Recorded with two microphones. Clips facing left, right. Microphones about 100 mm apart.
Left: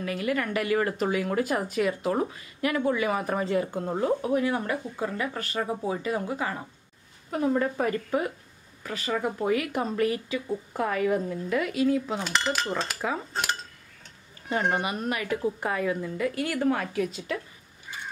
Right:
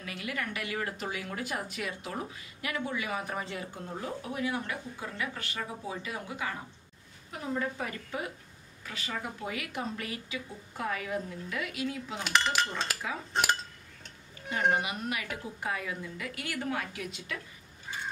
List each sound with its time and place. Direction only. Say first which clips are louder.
0.0 s a woman's voice: left 9 dB; 45° left (ahead or behind)
7.2 s speech: left 9 dB; 50° left (ahead or behind)
12.3 s dishes: right 3 dB; centre (ahead or behind)
14.5 s a woman's voice: left 3 dB; 45° left (ahead or behind)